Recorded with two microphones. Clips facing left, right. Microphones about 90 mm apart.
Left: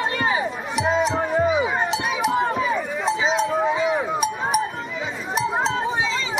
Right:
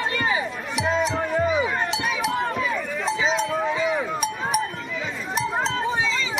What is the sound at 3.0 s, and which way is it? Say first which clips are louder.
Cowbell: left 1 dB; centre (ahead or behind).